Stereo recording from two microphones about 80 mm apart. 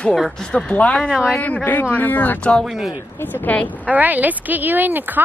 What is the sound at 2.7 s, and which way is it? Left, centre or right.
Speech, centre.